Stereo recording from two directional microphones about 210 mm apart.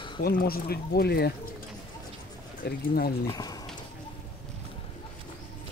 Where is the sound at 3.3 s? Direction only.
15° left (ahead or behind).